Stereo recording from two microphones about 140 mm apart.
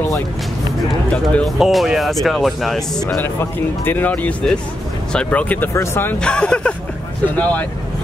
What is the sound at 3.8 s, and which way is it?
Speech, 15° left (ahead or behind).